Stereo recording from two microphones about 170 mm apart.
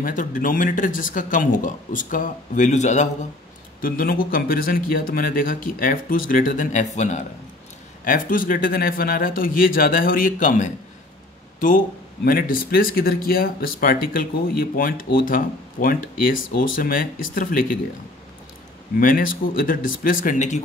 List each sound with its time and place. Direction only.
0.0 s speech: 50° left (ahead or behind)
3.8 s speech: 60° left (ahead or behind)
12.3 s speech: 55° left (ahead or behind)
18.9 s speech: 55° left (ahead or behind)